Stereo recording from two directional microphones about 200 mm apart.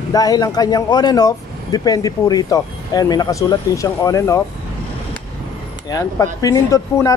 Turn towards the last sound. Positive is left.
turn(degrees=15)  # may be behind; listen again after turning